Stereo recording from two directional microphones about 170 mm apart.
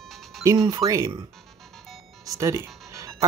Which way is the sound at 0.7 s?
20° right (ahead or behind).